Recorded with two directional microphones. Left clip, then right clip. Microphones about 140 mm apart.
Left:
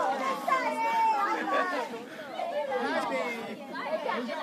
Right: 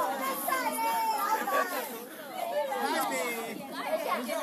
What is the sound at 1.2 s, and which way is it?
Chatter, 45° left (ahead or behind).